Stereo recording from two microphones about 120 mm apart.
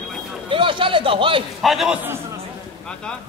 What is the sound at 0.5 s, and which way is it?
Speech, 45° right (ahead or behind).